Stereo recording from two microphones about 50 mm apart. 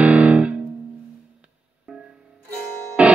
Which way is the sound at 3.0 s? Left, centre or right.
Right.